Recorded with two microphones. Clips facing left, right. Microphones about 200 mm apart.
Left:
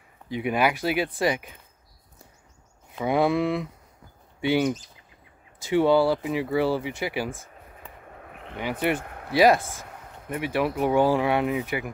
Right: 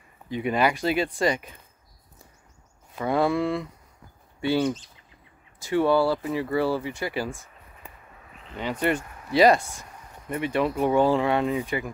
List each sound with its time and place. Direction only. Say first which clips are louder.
0.3 s speech: even; 10° left (ahead or behind)
3.1 s speech: left 1 dB; 20° left (ahead or behind)
8.2 s a sound: even; 60° left (ahead or behind)
9.3 s speech: even; 5° left (ahead or behind)
9.8 s a sound: left 3 dB; 65° left (ahead or behind)
10.3 s speech: right 1 dB; 5° left (ahead or behind)